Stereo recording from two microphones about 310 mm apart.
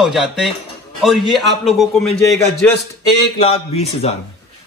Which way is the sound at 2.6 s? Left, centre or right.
Centre.